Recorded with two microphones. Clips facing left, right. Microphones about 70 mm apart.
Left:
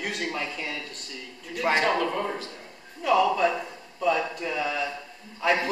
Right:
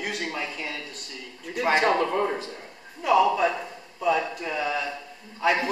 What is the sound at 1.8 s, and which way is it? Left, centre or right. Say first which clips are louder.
Speech: right 3 dB; centre.